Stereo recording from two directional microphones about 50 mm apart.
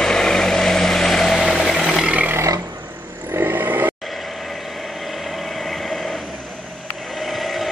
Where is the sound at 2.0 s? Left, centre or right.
Right.